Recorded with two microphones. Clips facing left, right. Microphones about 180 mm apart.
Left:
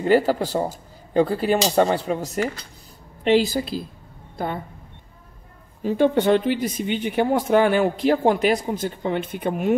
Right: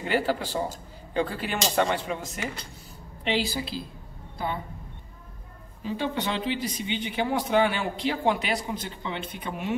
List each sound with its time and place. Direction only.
0.0 s speech: 40° left (ahead or behind)
3.3 s speech: 45° left (ahead or behind)
5.9 s speech: 50° left (ahead or behind)